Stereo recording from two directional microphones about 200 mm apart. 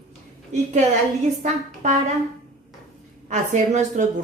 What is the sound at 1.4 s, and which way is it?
Speech, 35° right (ahead or behind).